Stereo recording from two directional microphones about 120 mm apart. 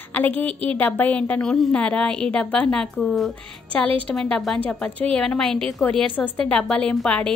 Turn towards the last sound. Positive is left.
turn(degrees=5)  # may be behind; listen again after turning